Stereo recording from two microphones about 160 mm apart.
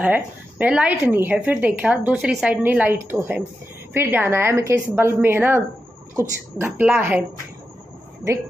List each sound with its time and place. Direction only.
0.0 s a woman's voice: 10° right (ahead or behind)